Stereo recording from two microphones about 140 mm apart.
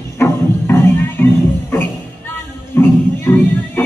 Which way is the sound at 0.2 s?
15° left (ahead or behind).